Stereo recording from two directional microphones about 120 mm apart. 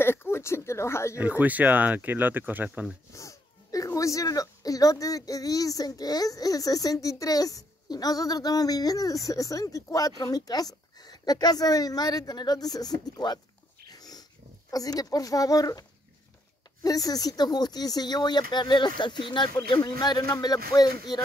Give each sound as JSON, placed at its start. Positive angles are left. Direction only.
{"t": 0.0, "sound": "speech", "side_deg": 20}
{"t": 1.2, "sound": "speech", "side_deg": -15}
{"t": 3.1, "sound": "speech", "side_deg": 25}
{"t": 13.8, "sound": "dog", "side_deg": 35}
{"t": 14.7, "sound": "speech", "side_deg": 30}
{"t": 16.8, "sound": "speech", "side_deg": 30}